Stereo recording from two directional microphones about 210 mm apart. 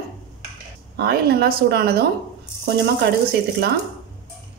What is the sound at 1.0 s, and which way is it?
Speech, 50° right (ahead or behind).